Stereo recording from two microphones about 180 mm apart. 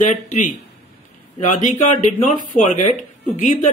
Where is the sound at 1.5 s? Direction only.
45° left (ahead or behind).